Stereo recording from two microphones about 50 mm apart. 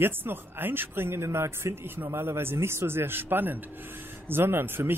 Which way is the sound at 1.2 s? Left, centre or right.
Right.